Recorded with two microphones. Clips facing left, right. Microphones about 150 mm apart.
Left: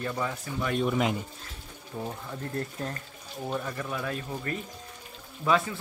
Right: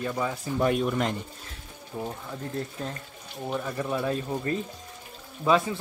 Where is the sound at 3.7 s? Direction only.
25° right (ahead or behind).